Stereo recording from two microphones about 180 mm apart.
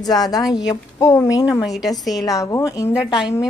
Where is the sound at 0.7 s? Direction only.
15° left (ahead or behind).